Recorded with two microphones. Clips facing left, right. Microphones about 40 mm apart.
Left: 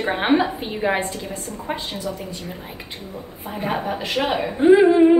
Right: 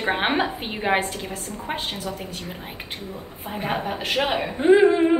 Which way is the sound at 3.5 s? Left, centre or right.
Centre.